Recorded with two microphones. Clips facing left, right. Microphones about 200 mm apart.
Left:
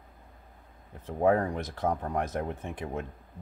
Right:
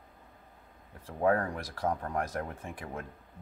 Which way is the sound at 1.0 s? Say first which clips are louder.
Left 3 dB; 20° left (ahead or behind).